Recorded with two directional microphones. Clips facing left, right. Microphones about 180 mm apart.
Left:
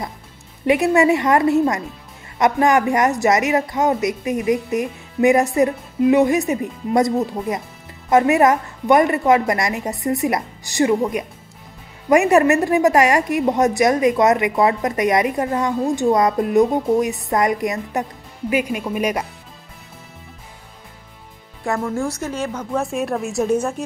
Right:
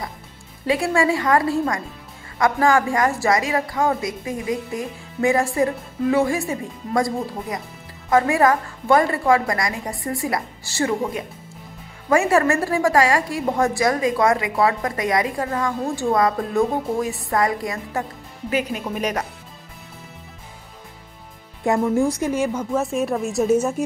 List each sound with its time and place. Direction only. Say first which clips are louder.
0.7 s a woman's voice: left 5 dB; 20° left (ahead or behind)
21.8 s speech: right 4 dB; 10° right (ahead or behind)